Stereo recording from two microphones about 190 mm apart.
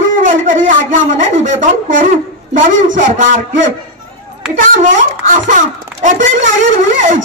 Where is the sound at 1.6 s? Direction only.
45° right (ahead or behind).